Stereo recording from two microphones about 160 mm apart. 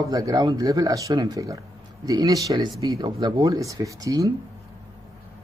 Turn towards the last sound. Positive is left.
turn(degrees=-20)  # may be behind; listen again after turning